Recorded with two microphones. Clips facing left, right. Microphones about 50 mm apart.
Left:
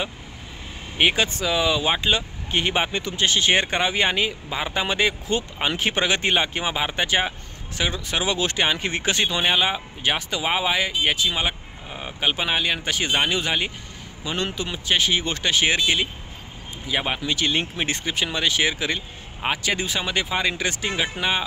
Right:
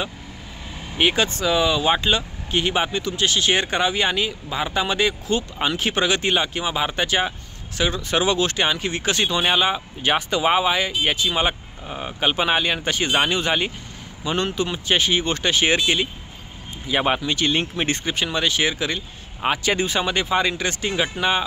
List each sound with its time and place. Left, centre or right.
0.9 s speech: centre
8.7 s speech: left
9.1 s speech: centre
10.1 s speech: centre
17.2 s speech: centre